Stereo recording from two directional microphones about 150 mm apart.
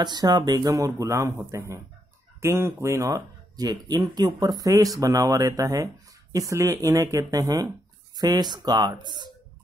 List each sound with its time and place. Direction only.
0.0 s speech: 25° right (ahead or behind)